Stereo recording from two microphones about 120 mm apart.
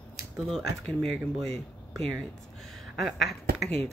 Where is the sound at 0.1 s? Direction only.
5° left (ahead or behind).